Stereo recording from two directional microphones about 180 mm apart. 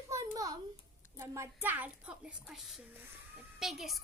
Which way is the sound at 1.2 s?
15° right (ahead or behind).